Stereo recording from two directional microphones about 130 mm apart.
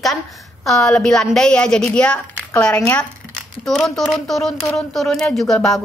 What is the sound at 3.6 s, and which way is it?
A woman's voice, centre (ahead or behind).